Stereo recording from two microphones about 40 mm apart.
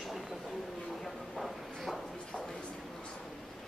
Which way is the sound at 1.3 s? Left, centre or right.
Centre.